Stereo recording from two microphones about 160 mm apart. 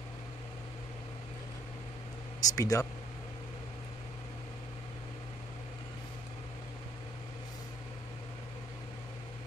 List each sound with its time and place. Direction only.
2.4 s speech: 20° left (ahead or behind)